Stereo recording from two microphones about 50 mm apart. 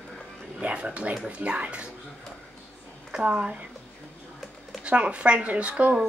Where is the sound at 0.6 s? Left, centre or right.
Right.